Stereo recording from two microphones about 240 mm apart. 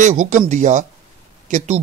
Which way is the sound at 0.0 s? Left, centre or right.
Right.